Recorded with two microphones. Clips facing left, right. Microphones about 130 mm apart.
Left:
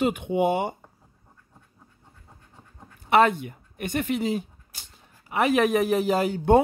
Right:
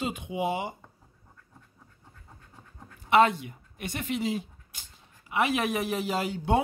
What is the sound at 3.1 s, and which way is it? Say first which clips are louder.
Speech: left 2 dB; 50° left (ahead or behind).